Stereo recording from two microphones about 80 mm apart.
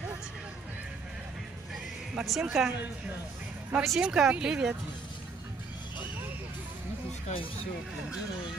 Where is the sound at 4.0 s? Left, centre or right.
Centre.